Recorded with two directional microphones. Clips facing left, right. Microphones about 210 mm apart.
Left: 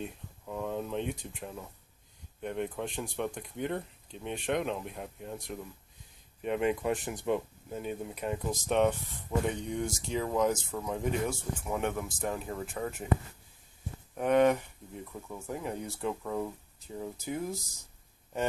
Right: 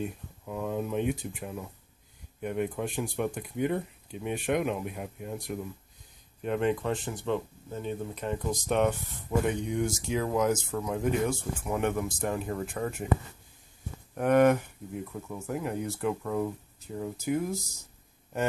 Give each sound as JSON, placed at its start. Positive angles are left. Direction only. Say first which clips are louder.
{"t": 0.0, "sound": "speech", "louder": "right 5 dB", "side_deg": -5}
{"t": 6.9, "sound": "speech", "louder": "even", "side_deg": 15}
{"t": 14.1, "sound": "speech", "louder": "right 3 dB", "side_deg": 0}